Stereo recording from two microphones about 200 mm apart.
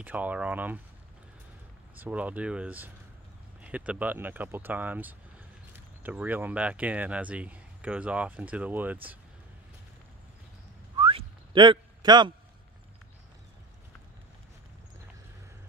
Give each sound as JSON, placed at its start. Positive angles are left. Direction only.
{"t": 0.0, "sound": "speech", "side_deg": -10}
{"t": 2.0, "sound": "speech", "side_deg": -10}
{"t": 11.0, "sound": "whistling", "side_deg": -25}